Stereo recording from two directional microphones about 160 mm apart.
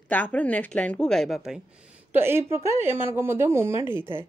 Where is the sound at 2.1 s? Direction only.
15° right (ahead or behind).